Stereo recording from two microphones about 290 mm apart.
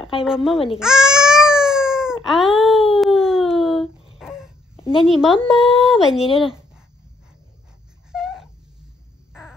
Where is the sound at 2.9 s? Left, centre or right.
Centre.